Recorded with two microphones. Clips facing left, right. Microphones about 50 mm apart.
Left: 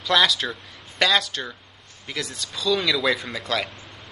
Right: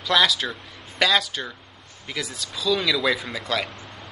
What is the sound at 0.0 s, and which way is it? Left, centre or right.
Speech, centre.